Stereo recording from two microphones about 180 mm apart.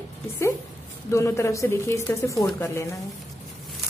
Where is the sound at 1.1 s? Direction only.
15° left (ahead or behind).